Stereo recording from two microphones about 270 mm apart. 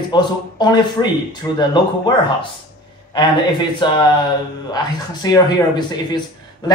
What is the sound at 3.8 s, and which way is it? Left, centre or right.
Speech, centre.